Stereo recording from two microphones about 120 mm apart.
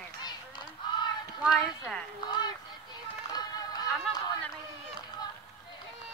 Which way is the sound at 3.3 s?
35° left (ahead or behind).